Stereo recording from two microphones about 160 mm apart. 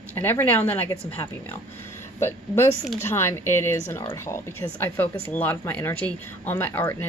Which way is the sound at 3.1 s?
15° left (ahead or behind).